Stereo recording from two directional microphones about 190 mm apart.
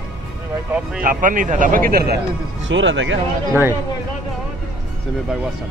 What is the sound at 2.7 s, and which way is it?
Speech, 80° right.